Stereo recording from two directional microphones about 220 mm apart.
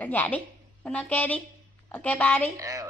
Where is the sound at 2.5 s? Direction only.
15° right (ahead or behind).